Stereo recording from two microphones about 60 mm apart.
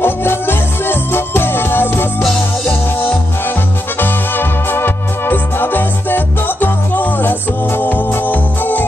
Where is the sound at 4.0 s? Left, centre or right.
Left.